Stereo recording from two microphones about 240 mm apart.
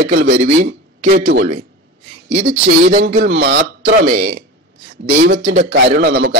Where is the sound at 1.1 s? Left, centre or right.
Right.